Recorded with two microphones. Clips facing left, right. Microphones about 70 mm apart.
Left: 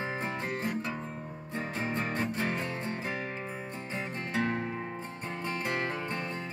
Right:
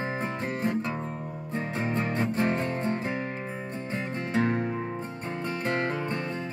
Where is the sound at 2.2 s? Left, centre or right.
Right.